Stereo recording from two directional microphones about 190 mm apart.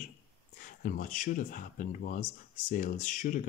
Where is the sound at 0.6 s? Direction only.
45° left (ahead or behind).